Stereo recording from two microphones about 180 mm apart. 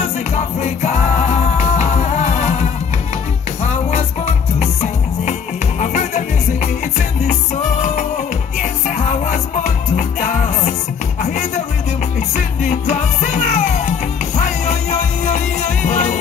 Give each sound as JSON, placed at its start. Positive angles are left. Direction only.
{"t": 0.6, "sound": "music", "side_deg": 40}
{"t": 4.6, "sound": "music", "side_deg": 40}
{"t": 12.6, "sound": "music", "side_deg": 40}